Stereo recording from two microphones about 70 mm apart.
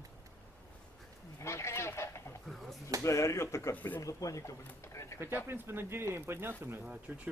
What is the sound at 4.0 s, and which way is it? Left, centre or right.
Speech, left.